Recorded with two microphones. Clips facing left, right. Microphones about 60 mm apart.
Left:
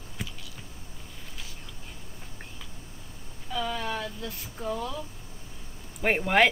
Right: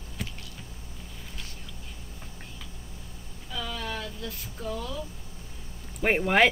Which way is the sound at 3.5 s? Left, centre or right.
Left.